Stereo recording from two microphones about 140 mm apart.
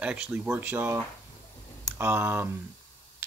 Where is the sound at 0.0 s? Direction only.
10° right (ahead or behind).